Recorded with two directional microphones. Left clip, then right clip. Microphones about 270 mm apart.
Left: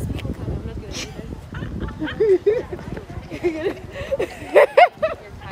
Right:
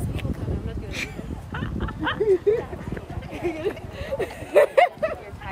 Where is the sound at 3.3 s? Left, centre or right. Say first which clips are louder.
Left 4 dB; left.